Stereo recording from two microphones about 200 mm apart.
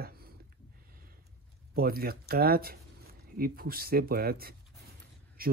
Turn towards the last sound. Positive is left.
turn(degrees=-45)  # may be behind; listen again after turning